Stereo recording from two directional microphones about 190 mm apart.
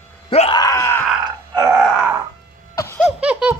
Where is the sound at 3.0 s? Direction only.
5° right (ahead or behind).